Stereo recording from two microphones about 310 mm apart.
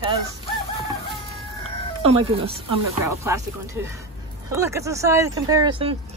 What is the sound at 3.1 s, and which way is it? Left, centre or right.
Speech, centre.